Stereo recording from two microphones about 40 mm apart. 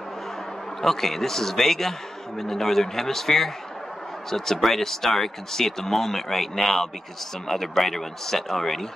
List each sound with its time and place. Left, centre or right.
0.7 s a man's voice: centre